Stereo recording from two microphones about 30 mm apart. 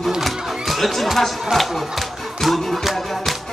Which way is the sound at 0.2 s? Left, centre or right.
Centre.